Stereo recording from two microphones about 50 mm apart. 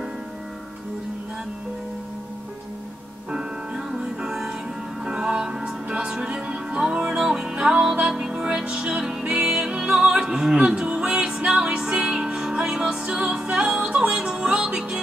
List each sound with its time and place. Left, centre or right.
3.3 s music: centre
10.2 s opera: centre
10.9 s music: centre